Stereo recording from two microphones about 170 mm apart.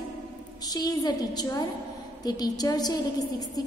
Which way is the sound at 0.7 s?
25° left (ahead or behind).